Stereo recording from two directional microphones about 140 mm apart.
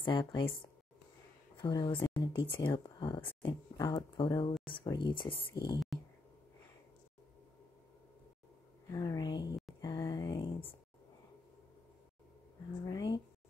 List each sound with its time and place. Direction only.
0.0 s speech: 35° left (ahead or behind)
1.6 s speech: 30° left (ahead or behind)
5.5 s speech: 25° left (ahead or behind)
8.9 s speech: 25° left (ahead or behind)
9.8 s a sound: 30° left (ahead or behind)
12.8 s a sound: 30° left (ahead or behind)